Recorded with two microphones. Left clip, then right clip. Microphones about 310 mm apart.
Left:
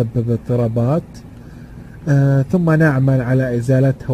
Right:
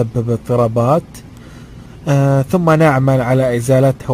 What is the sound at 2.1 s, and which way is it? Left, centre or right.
A man's voice, right.